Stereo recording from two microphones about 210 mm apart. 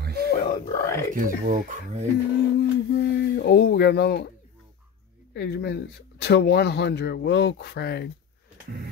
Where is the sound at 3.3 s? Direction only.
50° left (ahead or behind).